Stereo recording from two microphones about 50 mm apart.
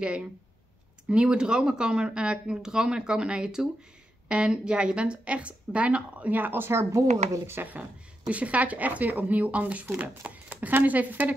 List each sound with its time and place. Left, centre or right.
0.0 s a woman's voice: right
6.7 s speech: right
7.5 s speech: right